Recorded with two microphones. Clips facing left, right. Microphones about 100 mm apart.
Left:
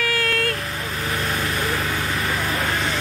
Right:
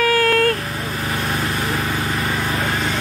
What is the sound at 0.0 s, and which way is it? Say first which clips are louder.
Vehicle: right 7 dB; 35° right (ahead or behind).